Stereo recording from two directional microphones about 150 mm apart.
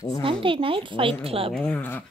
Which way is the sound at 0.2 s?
35° right (ahead or behind).